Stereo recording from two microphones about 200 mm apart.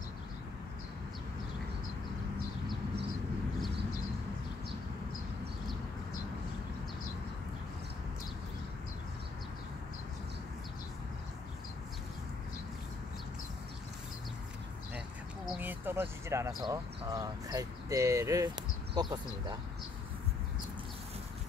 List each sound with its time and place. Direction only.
15.5 s speech: 10° right (ahead or behind)